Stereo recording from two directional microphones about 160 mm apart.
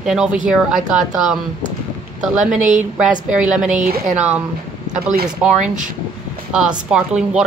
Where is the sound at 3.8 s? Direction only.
65° right (ahead or behind).